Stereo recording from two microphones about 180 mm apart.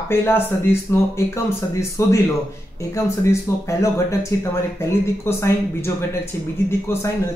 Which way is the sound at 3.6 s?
15° left (ahead or behind).